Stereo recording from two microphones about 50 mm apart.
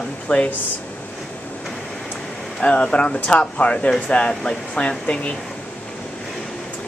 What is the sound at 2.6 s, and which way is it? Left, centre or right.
Speech, centre.